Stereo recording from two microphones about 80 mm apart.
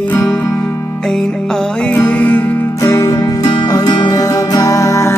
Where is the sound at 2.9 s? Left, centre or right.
Left.